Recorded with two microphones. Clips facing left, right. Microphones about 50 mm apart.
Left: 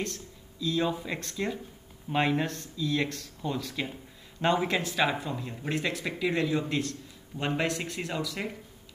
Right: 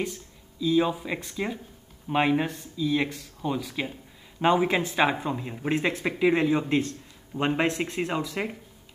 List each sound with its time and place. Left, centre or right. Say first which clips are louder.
0.0 s speech: right 3 dB; centre; by 8.5 s right